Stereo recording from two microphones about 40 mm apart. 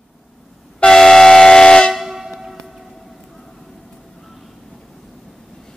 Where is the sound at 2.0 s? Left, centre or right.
Centre.